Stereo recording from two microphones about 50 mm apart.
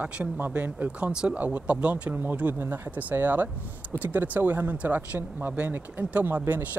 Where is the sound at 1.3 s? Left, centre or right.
Right.